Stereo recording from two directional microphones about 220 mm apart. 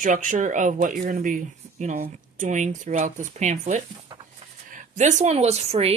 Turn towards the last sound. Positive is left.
turn(degrees=-30)  # may be behind; listen again after turning